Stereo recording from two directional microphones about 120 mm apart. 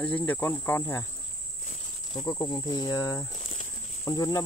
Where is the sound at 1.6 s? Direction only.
65° left (ahead or behind).